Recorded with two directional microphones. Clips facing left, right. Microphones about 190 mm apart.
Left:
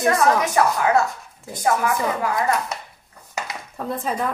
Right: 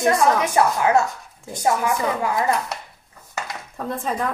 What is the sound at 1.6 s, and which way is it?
Speech, 20° right (ahead or behind).